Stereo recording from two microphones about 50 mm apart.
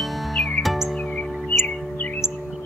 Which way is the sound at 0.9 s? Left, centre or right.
Centre.